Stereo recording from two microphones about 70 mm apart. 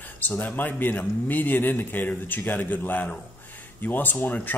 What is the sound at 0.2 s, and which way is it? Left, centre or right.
Speech, left.